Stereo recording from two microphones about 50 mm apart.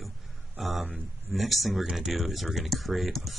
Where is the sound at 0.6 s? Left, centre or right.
Centre.